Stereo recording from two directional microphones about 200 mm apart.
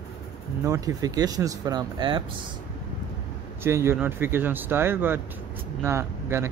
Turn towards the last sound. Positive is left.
turn(degrees=-10)  # may be behind; listen again after turning